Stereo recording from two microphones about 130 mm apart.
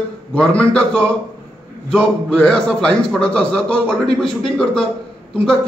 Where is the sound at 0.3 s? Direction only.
10° left (ahead or behind).